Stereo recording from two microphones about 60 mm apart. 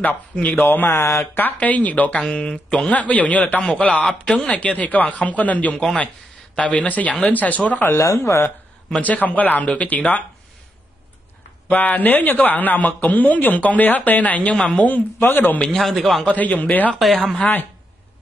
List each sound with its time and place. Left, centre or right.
0.0 s speech: left
0.6 s speech: left
1.3 s speech: left
8.0 s speech: left
8.9 s speech: left
11.7 s speech: left
15.6 s speech: centre
16.3 s speech: left
17.0 s speech: centre
17.4 s speech: left